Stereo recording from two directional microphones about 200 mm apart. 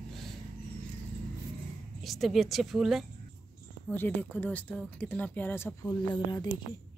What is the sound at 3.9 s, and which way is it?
A woman's voice, 10° left (ahead or behind).